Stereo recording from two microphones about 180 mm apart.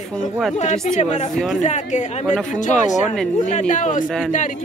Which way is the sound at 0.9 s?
40° left (ahead or behind).